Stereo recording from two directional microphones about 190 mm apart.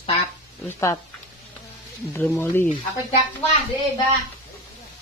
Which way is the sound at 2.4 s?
10° left (ahead or behind).